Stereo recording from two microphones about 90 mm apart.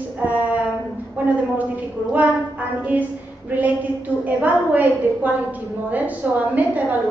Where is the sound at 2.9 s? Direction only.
20° right (ahead or behind).